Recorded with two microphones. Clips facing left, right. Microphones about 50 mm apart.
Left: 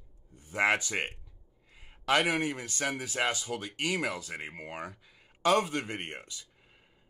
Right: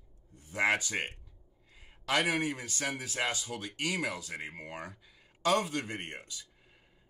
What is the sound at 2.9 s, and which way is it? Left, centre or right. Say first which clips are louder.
Speech: left 3 dB; centre.